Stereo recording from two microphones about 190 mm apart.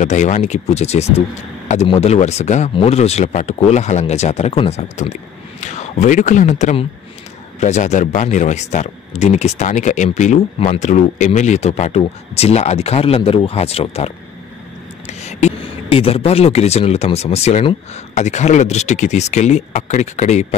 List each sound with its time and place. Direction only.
0.0 s speech: 40° left (ahead or behind)